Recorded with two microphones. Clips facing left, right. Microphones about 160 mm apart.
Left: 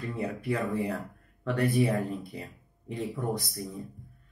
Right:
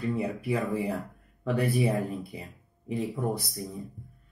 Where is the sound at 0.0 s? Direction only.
Centre (ahead or behind).